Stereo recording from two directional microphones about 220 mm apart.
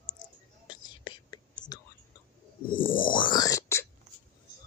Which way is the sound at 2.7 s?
40° left (ahead or behind).